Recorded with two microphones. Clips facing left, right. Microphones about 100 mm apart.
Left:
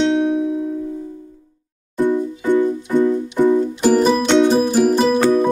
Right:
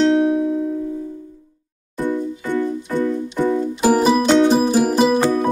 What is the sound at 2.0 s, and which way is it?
Music, 20° left (ahead or behind).